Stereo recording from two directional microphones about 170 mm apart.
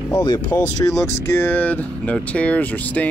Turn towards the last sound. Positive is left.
turn(degrees=10)  # may be behind; listen again after turning